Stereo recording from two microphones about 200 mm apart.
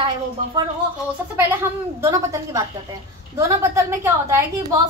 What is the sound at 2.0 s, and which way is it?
Speech, 15° right (ahead or behind).